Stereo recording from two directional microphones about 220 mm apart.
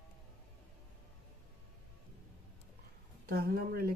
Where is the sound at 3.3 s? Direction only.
45° right (ahead or behind).